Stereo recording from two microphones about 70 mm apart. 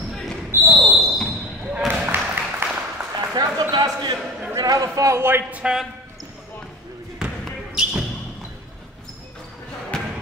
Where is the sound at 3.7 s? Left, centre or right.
Right.